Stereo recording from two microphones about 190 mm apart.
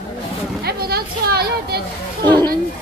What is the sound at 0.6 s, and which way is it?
Children playing, 55° right (ahead or behind).